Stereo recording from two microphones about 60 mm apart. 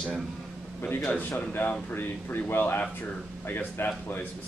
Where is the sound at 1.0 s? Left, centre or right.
Left.